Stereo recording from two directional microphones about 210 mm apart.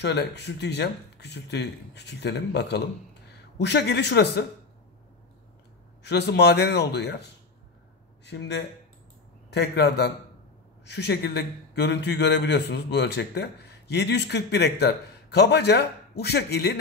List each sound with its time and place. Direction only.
0.0 s a man's voice: 55° left (ahead or behind)
6.0 s a man's voice: 55° left (ahead or behind)
8.3 s a man's voice: 55° left (ahead or behind)